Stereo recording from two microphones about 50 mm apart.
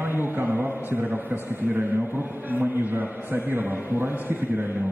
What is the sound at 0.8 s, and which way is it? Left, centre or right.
A man's voice, right.